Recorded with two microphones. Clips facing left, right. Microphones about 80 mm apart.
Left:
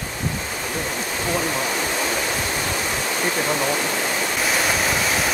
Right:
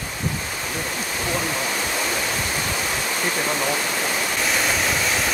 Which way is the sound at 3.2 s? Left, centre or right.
Centre.